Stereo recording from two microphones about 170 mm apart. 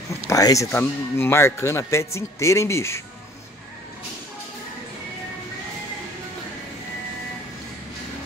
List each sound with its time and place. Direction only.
0.3 s a man's voice: 20° left (ahead or behind)